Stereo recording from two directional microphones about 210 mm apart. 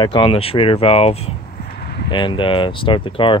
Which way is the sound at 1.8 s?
50° left (ahead or behind).